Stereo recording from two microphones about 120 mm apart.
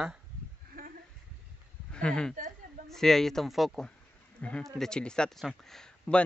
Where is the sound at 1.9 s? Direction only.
5° left (ahead or behind).